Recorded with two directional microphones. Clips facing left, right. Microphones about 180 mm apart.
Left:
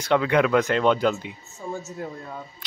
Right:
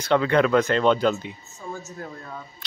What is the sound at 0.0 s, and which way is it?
Speech, 10° left (ahead or behind).